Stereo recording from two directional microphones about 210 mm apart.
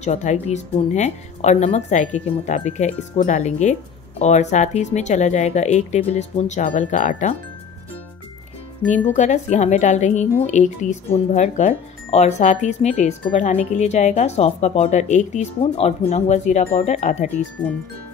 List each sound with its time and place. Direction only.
0.0 s speech: 35° left (ahead or behind)
8.8 s speech: 35° left (ahead or behind)